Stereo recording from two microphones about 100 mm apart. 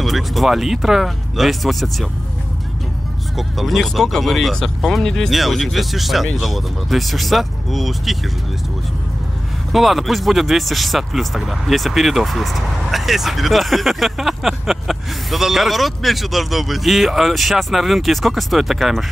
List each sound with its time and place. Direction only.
0.0 s speech: centre (ahead or behind)
3.3 s speech: centre (ahead or behind)
9.7 s speech: centre (ahead or behind)